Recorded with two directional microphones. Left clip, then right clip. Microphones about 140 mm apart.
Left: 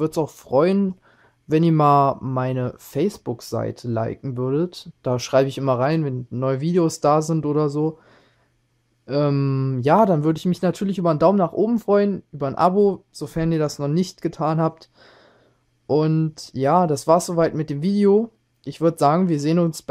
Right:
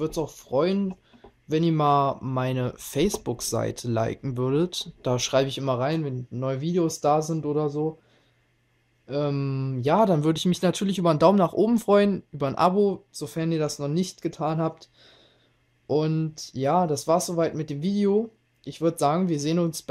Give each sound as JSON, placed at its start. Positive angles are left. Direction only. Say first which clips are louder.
{"t": 0.0, "sound": "speech", "louder": "left 6 dB", "side_deg": 50}
{"t": 9.0, "sound": "speech", "louder": "left 6 dB", "side_deg": 50}